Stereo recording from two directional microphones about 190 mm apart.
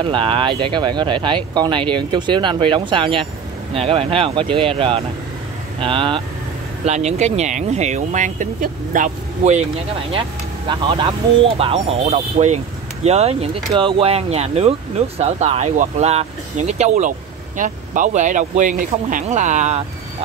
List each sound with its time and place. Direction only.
0.0 s speech: 25° right (ahead or behind)
10.7 s speech: 25° right (ahead or behind)